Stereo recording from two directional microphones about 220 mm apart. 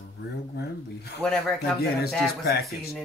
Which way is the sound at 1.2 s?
5° left (ahead or behind).